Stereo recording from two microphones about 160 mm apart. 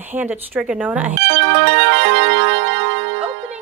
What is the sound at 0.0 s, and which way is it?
A woman's voice, 10° right (ahead or behind).